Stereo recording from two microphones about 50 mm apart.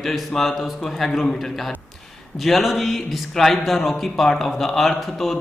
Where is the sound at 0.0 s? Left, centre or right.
Centre.